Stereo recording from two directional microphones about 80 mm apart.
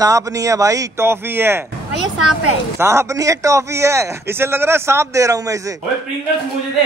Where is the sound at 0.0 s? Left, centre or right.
Right.